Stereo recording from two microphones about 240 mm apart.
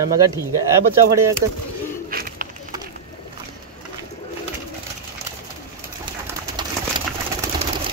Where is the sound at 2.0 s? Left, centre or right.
Right.